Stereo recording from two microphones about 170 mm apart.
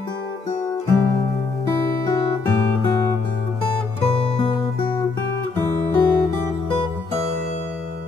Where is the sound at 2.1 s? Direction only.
20° left (ahead or behind).